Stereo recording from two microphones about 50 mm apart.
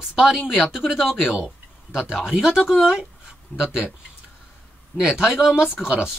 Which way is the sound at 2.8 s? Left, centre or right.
Centre.